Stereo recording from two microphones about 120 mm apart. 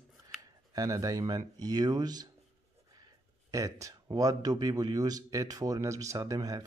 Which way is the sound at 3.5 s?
30° right (ahead or behind).